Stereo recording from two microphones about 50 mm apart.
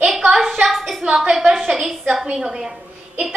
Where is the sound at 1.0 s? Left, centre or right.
Centre.